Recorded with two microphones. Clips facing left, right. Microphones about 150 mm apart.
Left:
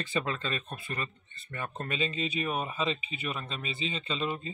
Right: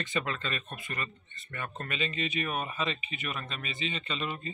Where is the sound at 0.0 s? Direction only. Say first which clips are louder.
Left 1 dB; 30° left (ahead or behind).